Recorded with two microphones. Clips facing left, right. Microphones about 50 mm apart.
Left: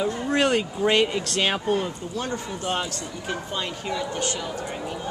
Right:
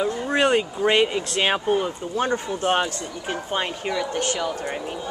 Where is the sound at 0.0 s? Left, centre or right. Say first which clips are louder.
Right 2 dB; centre.